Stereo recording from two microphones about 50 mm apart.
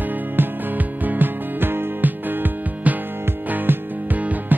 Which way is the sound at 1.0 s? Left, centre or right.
Right.